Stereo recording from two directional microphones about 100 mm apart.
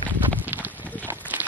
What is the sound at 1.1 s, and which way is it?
Horse, 20° right (ahead or behind).